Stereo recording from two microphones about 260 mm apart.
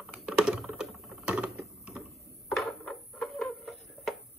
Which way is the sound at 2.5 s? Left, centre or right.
Centre.